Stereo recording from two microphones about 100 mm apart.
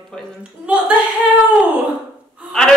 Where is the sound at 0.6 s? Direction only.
10° right (ahead or behind).